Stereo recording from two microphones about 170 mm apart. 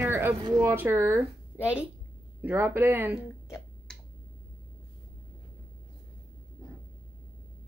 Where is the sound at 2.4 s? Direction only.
10° right (ahead or behind).